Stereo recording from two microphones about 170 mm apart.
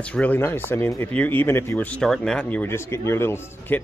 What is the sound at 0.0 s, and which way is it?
Speech, 10° left (ahead or behind).